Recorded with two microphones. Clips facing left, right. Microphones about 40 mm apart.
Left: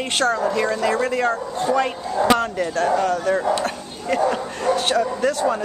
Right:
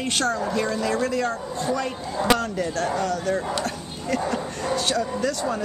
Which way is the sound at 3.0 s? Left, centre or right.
Left.